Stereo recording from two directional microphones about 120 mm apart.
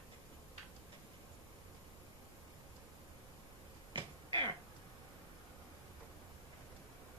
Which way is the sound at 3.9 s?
40° right (ahead or behind).